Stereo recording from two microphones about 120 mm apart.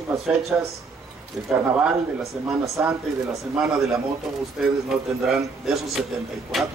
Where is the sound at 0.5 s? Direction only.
20° right (ahead or behind).